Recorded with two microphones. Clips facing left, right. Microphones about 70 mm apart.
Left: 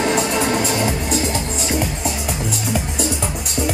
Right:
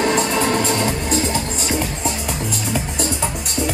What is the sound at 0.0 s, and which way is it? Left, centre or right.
Music, centre.